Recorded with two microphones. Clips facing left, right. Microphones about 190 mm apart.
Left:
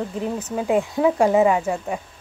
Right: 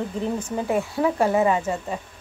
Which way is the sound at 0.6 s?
15° left (ahead or behind).